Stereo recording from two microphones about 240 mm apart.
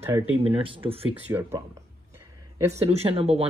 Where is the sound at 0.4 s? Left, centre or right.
Right.